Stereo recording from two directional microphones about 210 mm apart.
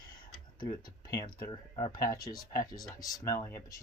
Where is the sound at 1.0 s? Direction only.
20° left (ahead or behind).